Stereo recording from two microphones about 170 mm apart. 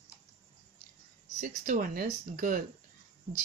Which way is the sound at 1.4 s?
55° right (ahead or behind).